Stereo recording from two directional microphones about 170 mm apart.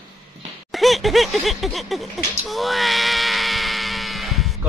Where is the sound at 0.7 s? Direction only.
Centre (ahead or behind).